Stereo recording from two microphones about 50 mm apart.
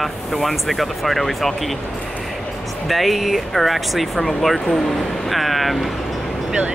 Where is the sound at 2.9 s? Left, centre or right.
Centre.